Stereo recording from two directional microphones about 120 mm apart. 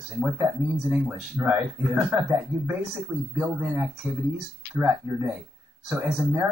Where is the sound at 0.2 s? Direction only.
10° right (ahead or behind).